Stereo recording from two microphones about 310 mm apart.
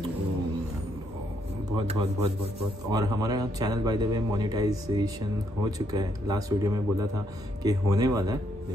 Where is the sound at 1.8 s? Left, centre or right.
Centre.